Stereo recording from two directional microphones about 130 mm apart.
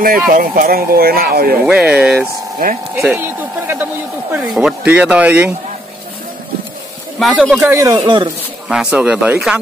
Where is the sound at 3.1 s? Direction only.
15° right (ahead or behind).